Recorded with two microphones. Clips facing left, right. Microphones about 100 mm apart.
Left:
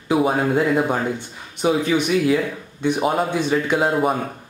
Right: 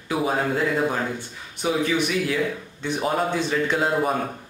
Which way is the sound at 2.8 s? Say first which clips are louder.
Left 4 dB; 15° left (ahead or behind).